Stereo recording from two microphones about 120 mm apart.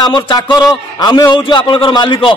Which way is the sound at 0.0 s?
40° left (ahead or behind).